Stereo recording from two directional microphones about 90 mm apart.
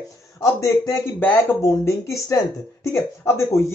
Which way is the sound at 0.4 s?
35° left (ahead or behind).